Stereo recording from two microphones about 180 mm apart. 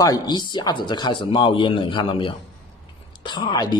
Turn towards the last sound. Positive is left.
turn(degrees=25)  # may be behind; listen again after turning